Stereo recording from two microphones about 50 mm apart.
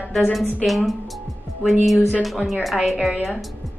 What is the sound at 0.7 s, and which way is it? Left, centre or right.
Speech, centre.